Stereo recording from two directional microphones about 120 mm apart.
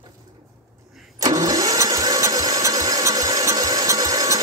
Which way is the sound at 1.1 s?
30° right (ahead or behind).